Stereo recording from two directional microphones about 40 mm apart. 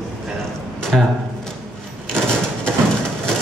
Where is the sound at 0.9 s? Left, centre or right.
Centre.